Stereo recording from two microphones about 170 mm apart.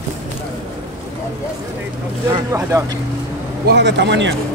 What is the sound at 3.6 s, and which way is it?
Speech, 85° right.